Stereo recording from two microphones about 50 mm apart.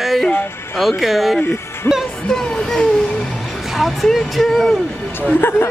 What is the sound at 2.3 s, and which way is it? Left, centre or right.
Speech, centre.